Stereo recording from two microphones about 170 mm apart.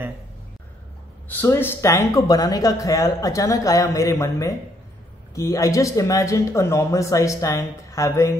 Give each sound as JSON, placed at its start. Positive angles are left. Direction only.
{"t": 1.3, "sound": "speech", "side_deg": 10}